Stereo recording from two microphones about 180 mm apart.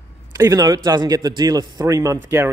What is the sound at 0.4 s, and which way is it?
A man's voice, 20° right (ahead or behind).